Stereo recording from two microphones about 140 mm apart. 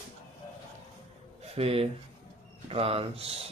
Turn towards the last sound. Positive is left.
turn(degrees=-45)  # may be behind; listen again after turning